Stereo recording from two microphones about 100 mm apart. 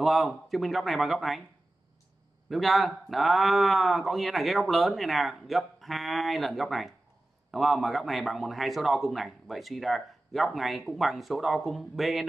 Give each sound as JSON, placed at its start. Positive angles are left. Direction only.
{"t": 0.0, "sound": "speech", "side_deg": 0}
{"t": 2.5, "sound": "speech", "side_deg": 0}